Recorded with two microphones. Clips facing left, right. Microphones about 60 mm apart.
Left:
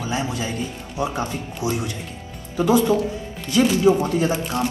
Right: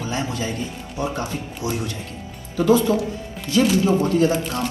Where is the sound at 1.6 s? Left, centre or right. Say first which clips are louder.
Left 2 dB; right.